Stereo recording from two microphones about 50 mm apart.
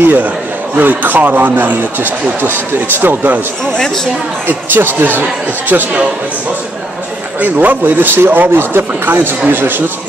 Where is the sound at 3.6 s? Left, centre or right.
Centre.